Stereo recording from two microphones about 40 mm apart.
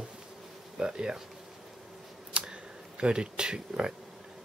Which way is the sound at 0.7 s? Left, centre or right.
Centre.